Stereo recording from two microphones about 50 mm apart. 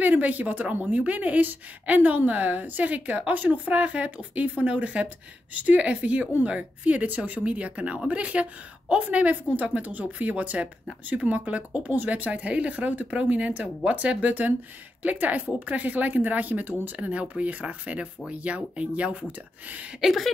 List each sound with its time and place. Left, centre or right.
0.0 s a woman's voice: right
20.0 s speech: centre